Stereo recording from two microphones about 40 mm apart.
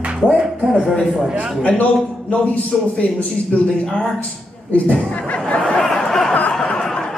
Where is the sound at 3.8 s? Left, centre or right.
Centre.